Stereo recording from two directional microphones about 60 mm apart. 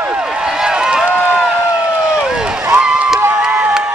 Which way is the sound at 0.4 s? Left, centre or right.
Centre.